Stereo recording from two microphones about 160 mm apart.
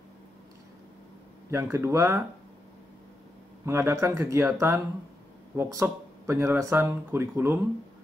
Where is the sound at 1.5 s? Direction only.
15° right (ahead or behind).